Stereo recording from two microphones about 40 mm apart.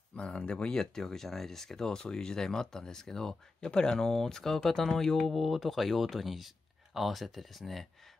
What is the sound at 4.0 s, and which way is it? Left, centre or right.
Speech, centre.